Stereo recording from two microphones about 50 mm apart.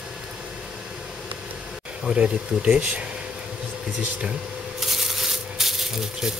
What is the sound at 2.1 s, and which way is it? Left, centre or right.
Speech, right.